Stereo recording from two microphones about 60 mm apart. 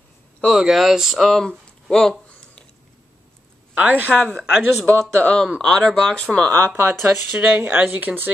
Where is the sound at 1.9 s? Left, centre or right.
Centre.